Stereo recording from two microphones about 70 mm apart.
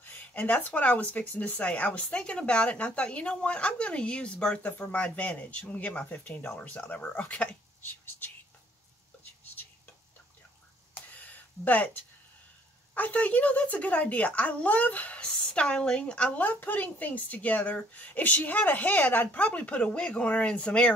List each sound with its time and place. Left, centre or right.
0.0 s speech: left
11.0 s a sound: left
12.9 s speech: left